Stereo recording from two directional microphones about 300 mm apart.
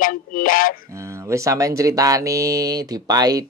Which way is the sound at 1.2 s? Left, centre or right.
Centre.